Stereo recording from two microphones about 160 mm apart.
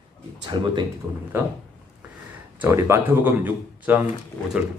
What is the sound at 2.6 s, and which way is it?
Speech, 15° right (ahead or behind).